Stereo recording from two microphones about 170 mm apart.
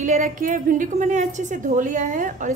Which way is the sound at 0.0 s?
50° right (ahead or behind).